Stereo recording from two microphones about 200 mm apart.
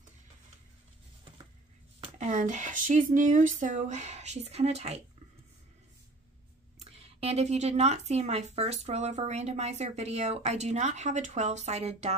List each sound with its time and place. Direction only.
2.1 s speech: 35° right (ahead or behind)
6.8 s speech: 30° right (ahead or behind)